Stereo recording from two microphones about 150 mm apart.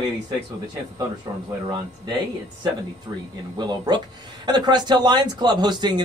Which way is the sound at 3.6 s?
30° right (ahead or behind).